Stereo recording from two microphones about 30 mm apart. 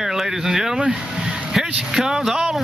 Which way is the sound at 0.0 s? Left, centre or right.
Centre.